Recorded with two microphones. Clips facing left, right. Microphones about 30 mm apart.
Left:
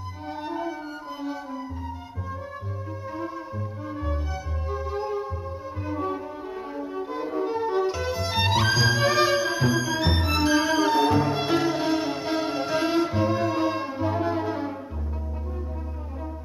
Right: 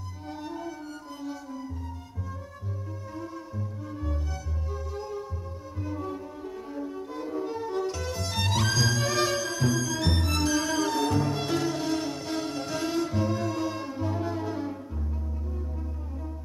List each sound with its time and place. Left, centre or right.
0.4 s music: left
3.9 s music: left
6.7 s violin: left